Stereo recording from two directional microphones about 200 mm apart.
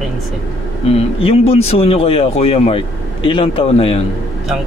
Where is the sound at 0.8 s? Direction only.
30° left (ahead or behind).